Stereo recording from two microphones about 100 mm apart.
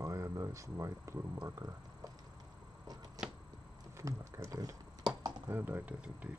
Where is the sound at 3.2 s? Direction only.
40° right (ahead or behind).